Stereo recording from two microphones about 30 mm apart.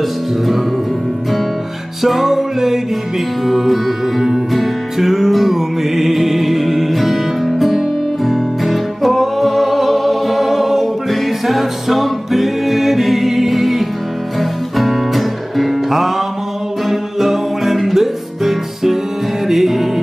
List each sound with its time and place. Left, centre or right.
2.0 s music: centre